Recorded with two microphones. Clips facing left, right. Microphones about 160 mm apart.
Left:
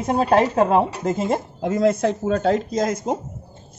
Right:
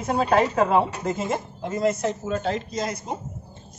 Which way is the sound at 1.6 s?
85° left.